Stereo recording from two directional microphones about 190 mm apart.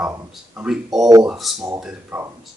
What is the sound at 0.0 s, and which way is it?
Speech, 5° right (ahead or behind).